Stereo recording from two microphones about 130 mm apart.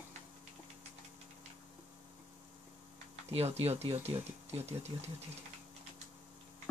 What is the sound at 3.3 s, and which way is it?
Speech, 50° right (ahead or behind).